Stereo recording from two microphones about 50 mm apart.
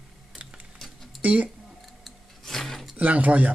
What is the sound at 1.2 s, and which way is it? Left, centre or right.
Speech, right.